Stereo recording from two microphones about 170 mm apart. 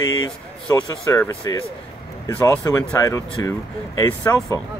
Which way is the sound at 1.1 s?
20° left (ahead or behind).